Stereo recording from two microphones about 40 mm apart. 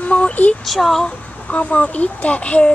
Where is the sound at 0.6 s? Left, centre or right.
Centre.